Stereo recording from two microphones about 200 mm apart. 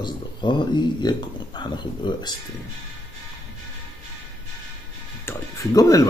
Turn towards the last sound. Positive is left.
turn(degrees=15)  # may be behind; listen again after turning